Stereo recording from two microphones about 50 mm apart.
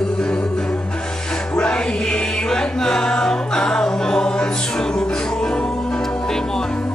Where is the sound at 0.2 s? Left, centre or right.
Centre.